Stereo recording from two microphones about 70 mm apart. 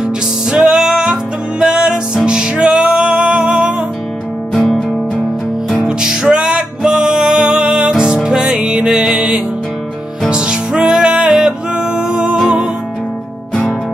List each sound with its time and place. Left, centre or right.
0.0 s music: centre
4.6 s music: centre
5.9 s music: centre